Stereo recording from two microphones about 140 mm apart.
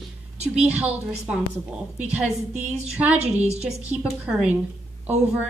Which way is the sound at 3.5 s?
50° right (ahead or behind).